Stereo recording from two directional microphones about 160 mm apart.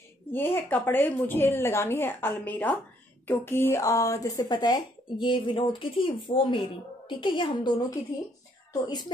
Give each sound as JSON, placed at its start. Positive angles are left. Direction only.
{"t": 0.3, "sound": "a woman's voice", "side_deg": 15}